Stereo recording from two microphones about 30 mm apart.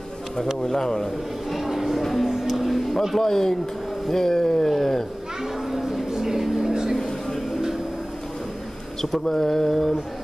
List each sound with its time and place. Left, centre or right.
0.7 s speech: centre
1.5 s a sound: centre
3.2 s mantra: centre
5.7 s a sound: centre
6.7 s vehicle: right
9.2 s mantra: centre